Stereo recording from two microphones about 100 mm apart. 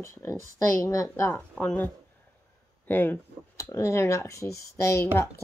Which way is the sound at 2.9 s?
20° left (ahead or behind).